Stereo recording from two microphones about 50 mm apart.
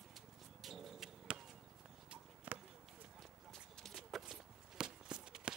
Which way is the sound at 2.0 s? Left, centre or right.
Right.